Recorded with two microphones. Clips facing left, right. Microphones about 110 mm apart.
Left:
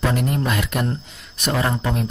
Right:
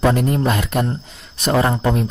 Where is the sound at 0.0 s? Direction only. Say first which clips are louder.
Right 5 dB; 35° right (ahead or behind).